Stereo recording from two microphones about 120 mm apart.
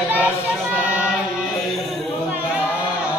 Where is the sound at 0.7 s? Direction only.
10° right (ahead or behind).